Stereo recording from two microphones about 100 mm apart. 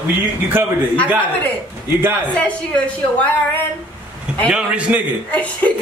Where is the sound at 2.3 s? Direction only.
15° left (ahead or behind).